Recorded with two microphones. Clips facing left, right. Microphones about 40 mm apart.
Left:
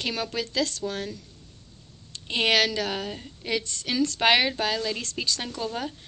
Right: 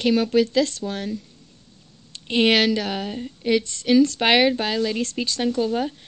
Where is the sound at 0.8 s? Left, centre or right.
Right.